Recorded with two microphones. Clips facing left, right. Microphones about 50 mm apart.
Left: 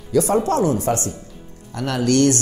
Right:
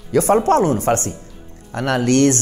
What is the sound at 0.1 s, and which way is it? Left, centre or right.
Speech, right.